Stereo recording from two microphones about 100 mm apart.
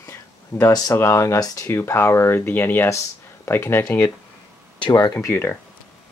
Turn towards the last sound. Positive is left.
turn(degrees=25)  # may be behind; listen again after turning